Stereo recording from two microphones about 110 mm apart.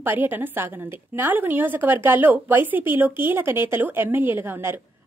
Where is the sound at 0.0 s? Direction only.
20° right (ahead or behind).